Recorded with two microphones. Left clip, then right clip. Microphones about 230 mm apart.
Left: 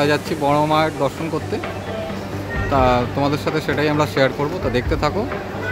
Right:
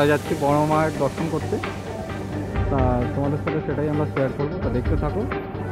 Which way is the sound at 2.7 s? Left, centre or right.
Left.